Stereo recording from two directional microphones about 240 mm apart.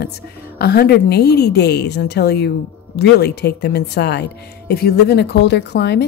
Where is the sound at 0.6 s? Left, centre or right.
Left.